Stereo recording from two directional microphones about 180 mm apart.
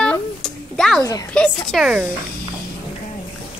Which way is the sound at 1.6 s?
Centre (ahead or behind).